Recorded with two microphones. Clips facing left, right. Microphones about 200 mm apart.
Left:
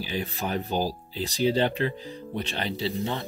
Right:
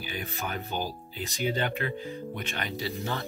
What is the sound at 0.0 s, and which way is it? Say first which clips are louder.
Speech: left 5 dB; 30° left (ahead or behind).